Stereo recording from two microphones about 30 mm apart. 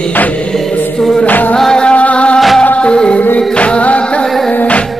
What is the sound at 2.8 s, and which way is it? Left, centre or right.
Music, left.